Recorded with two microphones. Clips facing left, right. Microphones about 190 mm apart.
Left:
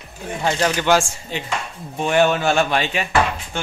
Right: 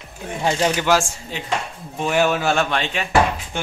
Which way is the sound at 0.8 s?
Centre (ahead or behind).